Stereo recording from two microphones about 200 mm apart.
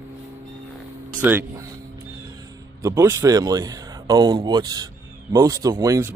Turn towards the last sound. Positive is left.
turn(degrees=-15)  # may be behind; listen again after turning